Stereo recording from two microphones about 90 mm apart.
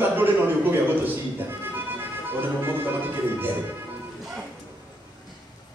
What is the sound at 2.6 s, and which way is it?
Speech, 25° right (ahead or behind).